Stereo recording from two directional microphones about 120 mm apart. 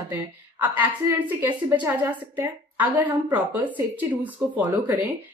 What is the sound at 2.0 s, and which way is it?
A woman's voice, 15° right (ahead or behind).